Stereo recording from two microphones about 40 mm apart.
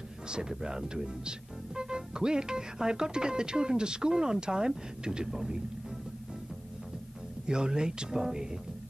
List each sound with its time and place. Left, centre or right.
0.3 s speech: centre
7.4 s speech: centre